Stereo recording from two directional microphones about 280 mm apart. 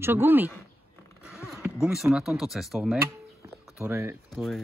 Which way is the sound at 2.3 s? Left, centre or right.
Centre.